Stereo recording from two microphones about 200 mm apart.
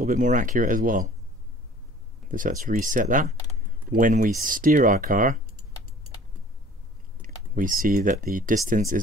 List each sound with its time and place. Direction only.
0.0 s speech: 40° right (ahead or behind)
2.2 s speech: 40° right (ahead or behind)
7.2 s speech: 45° right (ahead or behind)